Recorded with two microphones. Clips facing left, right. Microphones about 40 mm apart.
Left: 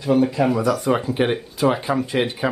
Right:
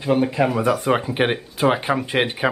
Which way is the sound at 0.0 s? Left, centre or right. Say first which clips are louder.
Left 1 dB; right.